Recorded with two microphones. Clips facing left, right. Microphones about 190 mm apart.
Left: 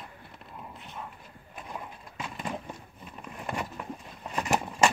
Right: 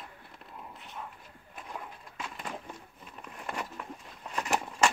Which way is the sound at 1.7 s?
10° left (ahead or behind).